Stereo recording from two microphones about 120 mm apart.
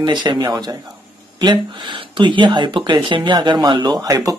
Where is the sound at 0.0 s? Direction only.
40° right (ahead or behind).